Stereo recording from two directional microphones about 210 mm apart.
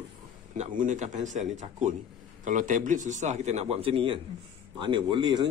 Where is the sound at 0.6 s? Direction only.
35° right (ahead or behind).